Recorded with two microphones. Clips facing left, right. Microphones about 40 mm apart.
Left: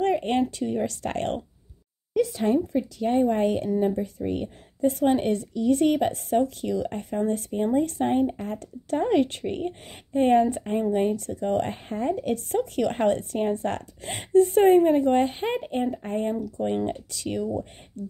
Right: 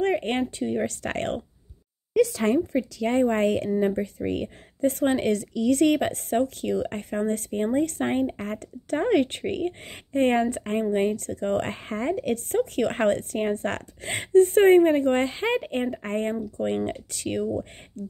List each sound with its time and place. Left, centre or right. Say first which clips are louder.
0.0 s speech: left 1 dB; right
0.8 s speech: even; right
2.1 s speech: right 1 dB; right
3.0 s a woman's voice: even; right